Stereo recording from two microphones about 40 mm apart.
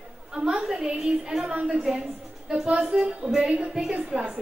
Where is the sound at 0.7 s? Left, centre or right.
Centre.